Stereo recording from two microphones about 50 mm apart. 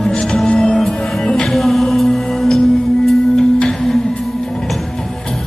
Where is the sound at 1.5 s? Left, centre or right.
Centre.